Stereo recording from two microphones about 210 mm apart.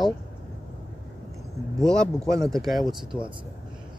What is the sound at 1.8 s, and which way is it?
Speech, centre (ahead or behind).